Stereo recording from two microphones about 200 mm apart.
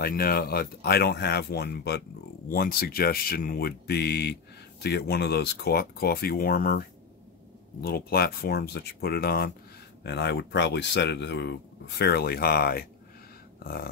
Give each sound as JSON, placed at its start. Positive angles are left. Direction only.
{"t": 0.0, "sound": "speech", "side_deg": 50}
{"t": 7.8, "sound": "speech", "side_deg": 50}
{"t": 13.6, "sound": "a sound", "side_deg": 50}